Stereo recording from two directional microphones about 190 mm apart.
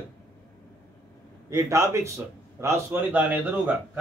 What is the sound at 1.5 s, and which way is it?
A man's voice, 15° right (ahead or behind).